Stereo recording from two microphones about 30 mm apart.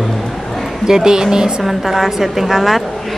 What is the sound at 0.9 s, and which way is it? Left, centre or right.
Speech, right.